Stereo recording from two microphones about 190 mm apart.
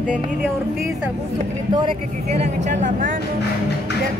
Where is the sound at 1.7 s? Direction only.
25° right (ahead or behind); by 3.2 s 45° right (ahead or behind).